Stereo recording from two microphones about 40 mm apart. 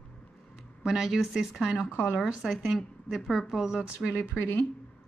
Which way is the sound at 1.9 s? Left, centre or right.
Left.